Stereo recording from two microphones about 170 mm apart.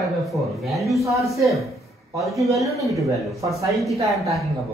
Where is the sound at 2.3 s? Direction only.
Centre (ahead or behind).